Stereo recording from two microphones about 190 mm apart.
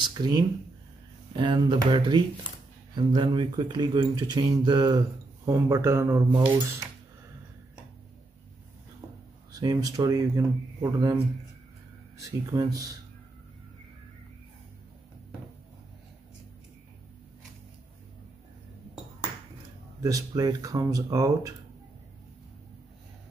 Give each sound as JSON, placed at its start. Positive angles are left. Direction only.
{"t": 0.1, "sound": "speech", "side_deg": -20}
{"t": 9.5, "sound": "speech", "side_deg": -20}
{"t": 12.2, "sound": "speech", "side_deg": -15}
{"t": 20.0, "sound": "speech", "side_deg": -20}